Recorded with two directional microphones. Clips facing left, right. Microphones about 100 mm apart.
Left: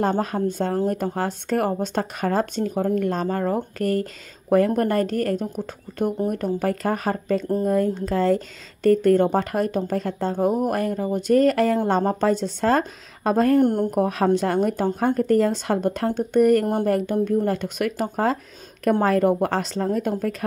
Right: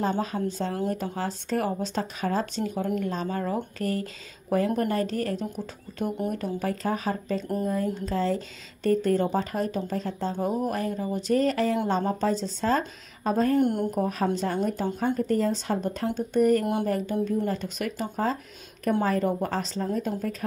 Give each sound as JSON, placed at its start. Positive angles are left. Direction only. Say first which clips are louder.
{"t": 0.2, "sound": "speech", "louder": "left 5 dB", "side_deg": 55}
{"t": 2.6, "sound": "speech", "louder": "left 6 dB", "side_deg": 45}
{"t": 13.6, "sound": "speech", "louder": "left 5 dB", "side_deg": 45}
{"t": 13.8, "sound": "a woman's voice", "louder": "left 6 dB", "side_deg": 70}